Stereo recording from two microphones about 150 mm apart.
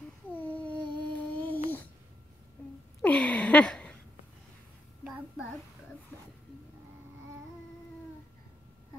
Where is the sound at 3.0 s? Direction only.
10° left (ahead or behind).